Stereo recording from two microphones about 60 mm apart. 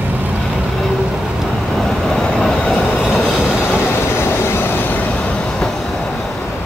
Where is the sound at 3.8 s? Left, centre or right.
Left.